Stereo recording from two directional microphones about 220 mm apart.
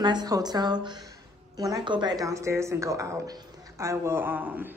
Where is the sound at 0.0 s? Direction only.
20° right (ahead or behind).